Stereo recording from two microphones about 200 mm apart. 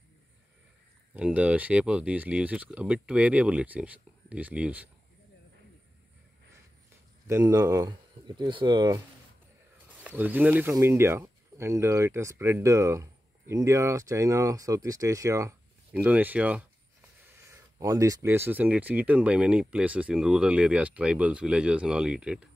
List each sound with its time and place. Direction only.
1.1 s speech: 5° right (ahead or behind)
7.2 s speech: 15° right (ahead or behind)
9.8 s speech: 10° right (ahead or behind)